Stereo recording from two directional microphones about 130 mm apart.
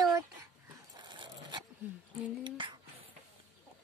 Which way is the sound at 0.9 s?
35° right (ahead or behind).